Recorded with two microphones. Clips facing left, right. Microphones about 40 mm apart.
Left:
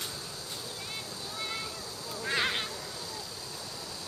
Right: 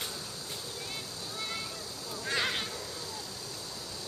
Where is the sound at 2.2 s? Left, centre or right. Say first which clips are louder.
Left 2 dB; centre.